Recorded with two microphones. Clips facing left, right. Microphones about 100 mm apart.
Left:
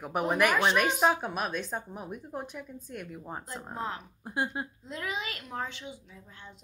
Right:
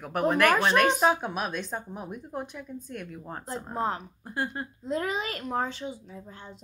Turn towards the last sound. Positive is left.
turn(degrees=-40)  # may be behind; listen again after turning